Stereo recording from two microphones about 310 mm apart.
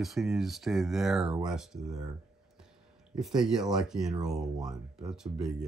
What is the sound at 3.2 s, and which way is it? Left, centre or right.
Speech, centre.